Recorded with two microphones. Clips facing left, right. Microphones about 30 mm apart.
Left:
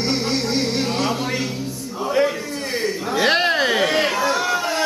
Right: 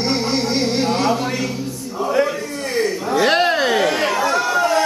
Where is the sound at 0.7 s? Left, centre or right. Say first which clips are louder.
Right 4 dB; centre.